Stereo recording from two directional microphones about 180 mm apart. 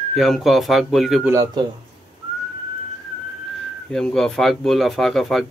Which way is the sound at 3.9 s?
5° left (ahead or behind).